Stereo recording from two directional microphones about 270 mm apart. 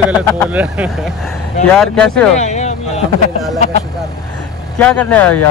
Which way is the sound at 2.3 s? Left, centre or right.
Left.